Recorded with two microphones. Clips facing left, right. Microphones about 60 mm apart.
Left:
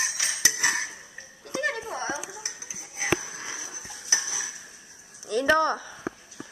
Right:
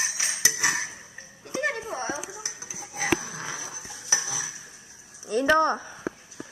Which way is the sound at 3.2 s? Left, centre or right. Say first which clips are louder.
Right 2 dB; right.